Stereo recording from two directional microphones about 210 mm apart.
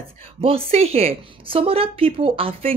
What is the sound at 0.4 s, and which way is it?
A woman's voice, 25° right (ahead or behind).